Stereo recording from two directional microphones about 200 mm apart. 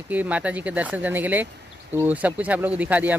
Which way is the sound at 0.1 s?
5° right (ahead or behind).